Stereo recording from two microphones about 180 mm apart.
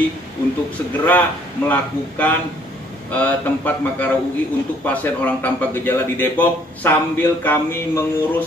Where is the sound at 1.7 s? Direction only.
10° left (ahead or behind).